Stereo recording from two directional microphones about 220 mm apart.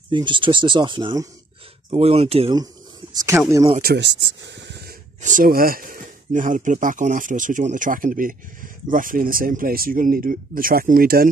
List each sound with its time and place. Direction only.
0.1 s speech: 20° right (ahead or behind)
3.8 s speech: 50° right (ahead or behind)
5.2 s speech: 40° right (ahead or behind)